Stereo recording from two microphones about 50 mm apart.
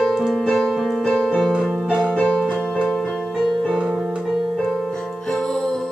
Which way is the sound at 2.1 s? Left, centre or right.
Centre.